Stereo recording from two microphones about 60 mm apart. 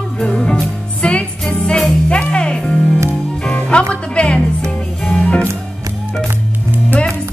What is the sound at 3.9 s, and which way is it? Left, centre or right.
Speech, centre.